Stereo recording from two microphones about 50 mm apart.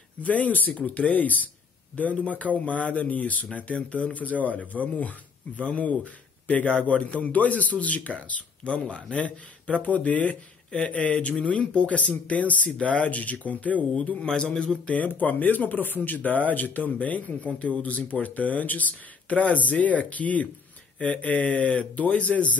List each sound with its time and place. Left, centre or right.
0.2 s speech: left
14.2 s a man's voice: centre
15.0 s speech: left